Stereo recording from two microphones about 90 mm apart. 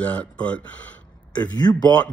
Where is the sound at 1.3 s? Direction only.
50° left (ahead or behind).